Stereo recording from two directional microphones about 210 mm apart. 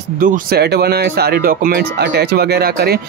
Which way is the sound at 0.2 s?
45° right (ahead or behind).